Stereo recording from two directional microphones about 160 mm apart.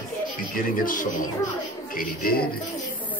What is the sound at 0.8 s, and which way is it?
A woman's voice, 60° left (ahead or behind).